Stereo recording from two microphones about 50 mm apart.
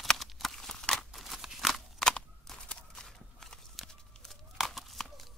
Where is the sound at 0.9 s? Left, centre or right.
Centre.